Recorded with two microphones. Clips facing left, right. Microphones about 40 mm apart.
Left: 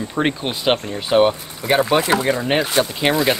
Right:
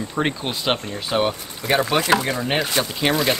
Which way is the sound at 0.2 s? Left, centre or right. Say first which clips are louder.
Left 3 dB; centre.